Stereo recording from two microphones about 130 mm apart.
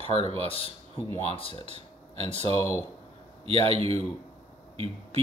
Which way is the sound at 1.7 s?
55° right (ahead or behind).